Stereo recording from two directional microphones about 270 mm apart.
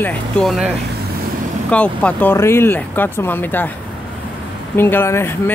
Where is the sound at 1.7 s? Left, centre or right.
Centre.